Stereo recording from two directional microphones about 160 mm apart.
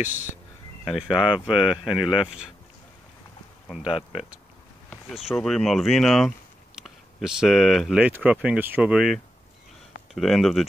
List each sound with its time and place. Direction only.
0.0 s speech: 50° left (ahead or behind)
0.8 s speech: 5° right (ahead or behind)
3.8 s speech: 35° left (ahead or behind)
5.3 s speech: 5° left (ahead or behind)